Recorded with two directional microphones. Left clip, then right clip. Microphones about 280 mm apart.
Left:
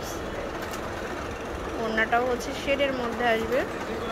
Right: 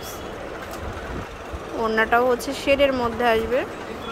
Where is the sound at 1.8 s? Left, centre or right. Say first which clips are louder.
Right 6 dB; right.